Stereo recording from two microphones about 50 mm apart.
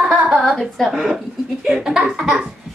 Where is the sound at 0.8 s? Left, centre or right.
Centre.